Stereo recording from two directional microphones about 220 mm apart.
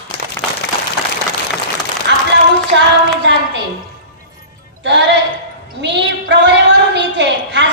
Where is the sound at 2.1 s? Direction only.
55° right (ahead or behind).